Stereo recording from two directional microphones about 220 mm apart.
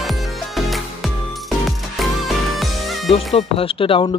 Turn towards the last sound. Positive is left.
turn(degrees=25)  # may be behind; listen again after turning